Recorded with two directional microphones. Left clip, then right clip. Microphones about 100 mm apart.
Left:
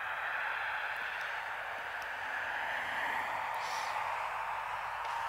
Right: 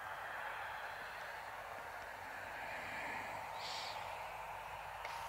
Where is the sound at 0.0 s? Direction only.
15° left (ahead or behind).